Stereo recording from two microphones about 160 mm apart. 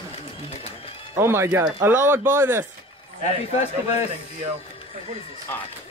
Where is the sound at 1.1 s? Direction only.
15° right (ahead or behind).